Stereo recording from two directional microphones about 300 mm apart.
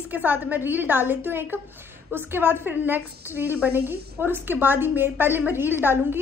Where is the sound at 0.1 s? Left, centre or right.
Centre.